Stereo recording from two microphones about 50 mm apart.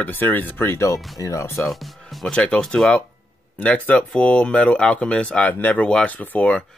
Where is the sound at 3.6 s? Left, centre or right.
Left.